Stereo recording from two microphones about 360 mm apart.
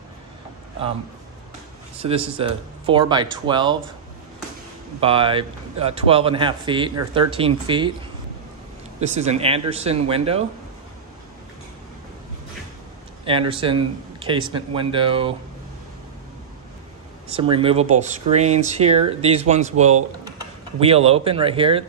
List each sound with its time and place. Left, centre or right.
2.0 s speech: centre
5.0 s speech: centre
9.0 s speech: centre
13.2 s speech: centre
17.3 s speech: centre